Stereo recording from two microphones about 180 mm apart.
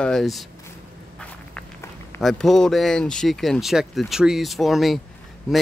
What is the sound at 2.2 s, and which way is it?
A man's voice, centre (ahead or behind).